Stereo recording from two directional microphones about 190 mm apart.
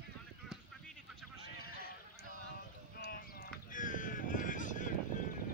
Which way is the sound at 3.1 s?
45° left (ahead or behind).